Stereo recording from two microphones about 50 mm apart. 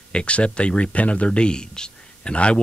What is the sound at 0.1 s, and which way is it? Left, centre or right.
Speech, left.